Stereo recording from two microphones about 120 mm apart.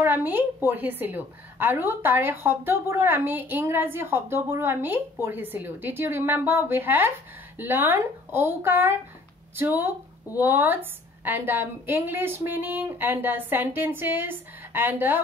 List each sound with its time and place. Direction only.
0.0 s a woman's voice: 15° right (ahead or behind)